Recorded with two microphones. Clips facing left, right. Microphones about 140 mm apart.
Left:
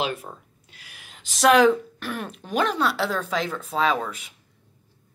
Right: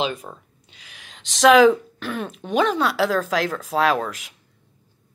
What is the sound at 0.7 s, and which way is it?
Gasp, 5° left (ahead or behind).